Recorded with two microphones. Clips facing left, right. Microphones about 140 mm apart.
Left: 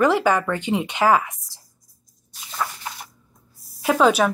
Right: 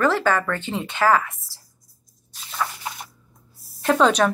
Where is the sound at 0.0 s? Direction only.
15° left (ahead or behind).